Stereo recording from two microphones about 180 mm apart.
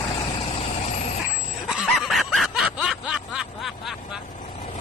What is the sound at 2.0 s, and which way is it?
Snicker, centre (ahead or behind).